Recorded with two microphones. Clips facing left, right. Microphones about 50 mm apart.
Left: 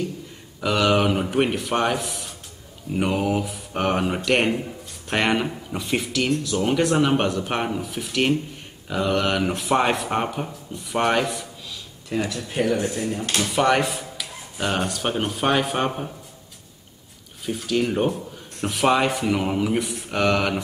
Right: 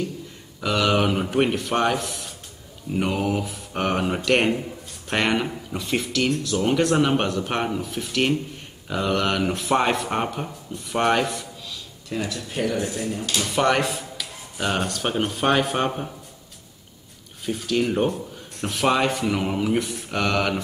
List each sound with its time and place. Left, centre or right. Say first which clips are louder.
0.6 s speech: left 1 dB; centre
12.2 s speech: left 2 dB; left
13.6 s a sound: left 1 dB; centre
14.8 s speech: even; centre
17.5 s speech: even; centre